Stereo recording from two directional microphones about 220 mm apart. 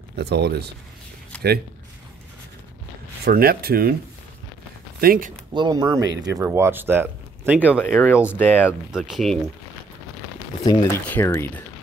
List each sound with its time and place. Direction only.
0.1 s speech: 50° right (ahead or behind)
1.3 s a sound: 5° left (ahead or behind)
3.3 s speech: 45° right (ahead or behind)
5.0 s speech: 40° right (ahead or behind)
5.5 s speech: 20° right (ahead or behind)
7.7 s speech: 10° left (ahead or behind)
10.6 s speech: 15° left (ahead or behind)